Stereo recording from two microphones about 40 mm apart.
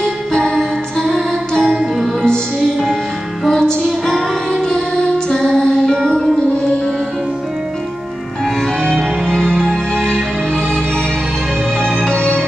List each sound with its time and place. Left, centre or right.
0.0 s music: centre
2.2 s music: left
8.8 s music: centre
11.8 s music: centre